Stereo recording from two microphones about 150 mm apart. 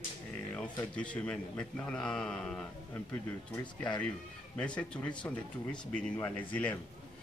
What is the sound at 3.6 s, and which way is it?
Speech, 30° left (ahead or behind).